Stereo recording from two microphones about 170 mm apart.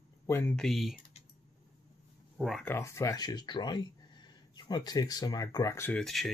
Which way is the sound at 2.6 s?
15° left (ahead or behind).